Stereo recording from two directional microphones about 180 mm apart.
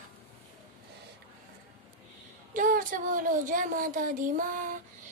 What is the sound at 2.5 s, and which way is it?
A child's voice, 50° right (ahead or behind).